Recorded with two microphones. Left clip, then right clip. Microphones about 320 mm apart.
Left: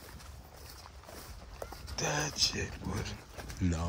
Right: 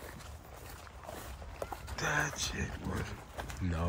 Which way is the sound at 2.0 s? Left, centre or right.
Left.